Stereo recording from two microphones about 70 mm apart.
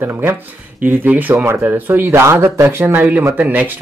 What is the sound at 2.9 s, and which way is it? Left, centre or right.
Speech, right.